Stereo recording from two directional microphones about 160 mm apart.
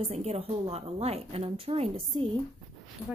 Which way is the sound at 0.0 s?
40° right (ahead or behind).